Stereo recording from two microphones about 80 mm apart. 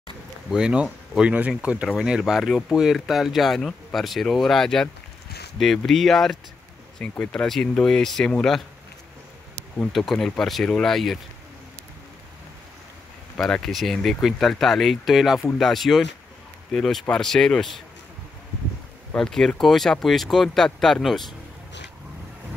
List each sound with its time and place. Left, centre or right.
0.5 s speech: centre
9.9 s speech: centre
13.5 s speech: centre
19.1 s speech: centre